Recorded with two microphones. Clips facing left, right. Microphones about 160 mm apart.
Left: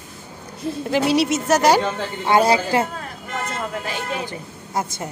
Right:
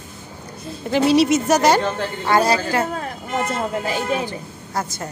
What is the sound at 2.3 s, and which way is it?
Speech, 20° left (ahead or behind).